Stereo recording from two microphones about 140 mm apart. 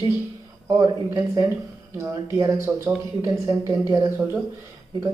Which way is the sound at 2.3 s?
20° right (ahead or behind).